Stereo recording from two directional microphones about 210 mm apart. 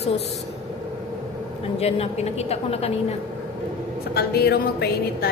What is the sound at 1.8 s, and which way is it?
A woman's voice, 30° left (ahead or behind).